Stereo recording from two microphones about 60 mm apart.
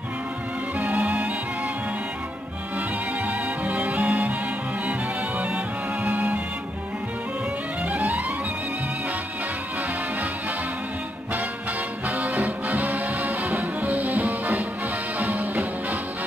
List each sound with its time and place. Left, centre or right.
0.7 s music: centre
3.3 s music: right
6.0 s music: centre
12.2 s music: right